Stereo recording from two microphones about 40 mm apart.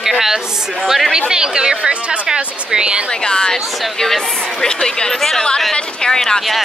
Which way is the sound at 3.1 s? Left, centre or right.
Left.